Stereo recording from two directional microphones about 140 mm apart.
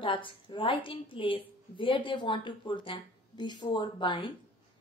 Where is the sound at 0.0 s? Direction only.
40° left (ahead or behind).